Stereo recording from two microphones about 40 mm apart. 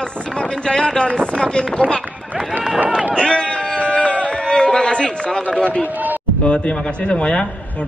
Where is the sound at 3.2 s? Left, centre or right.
Left.